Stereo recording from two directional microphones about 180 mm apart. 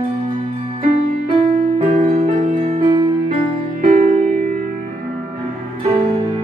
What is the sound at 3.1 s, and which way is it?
Music, 40° right (ahead or behind).